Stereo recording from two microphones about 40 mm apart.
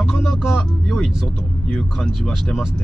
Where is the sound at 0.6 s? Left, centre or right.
Centre.